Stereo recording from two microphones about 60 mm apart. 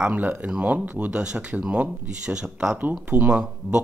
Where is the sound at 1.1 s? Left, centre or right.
Centre.